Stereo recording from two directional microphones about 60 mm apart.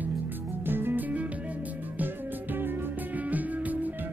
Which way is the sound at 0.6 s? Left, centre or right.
Right.